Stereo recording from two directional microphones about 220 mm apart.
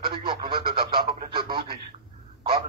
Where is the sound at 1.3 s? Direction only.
20° right (ahead or behind).